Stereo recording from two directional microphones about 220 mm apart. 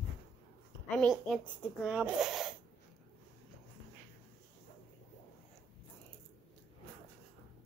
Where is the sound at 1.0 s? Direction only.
5° left (ahead or behind).